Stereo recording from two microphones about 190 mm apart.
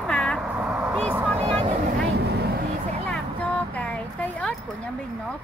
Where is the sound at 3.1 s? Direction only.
5° left (ahead or behind).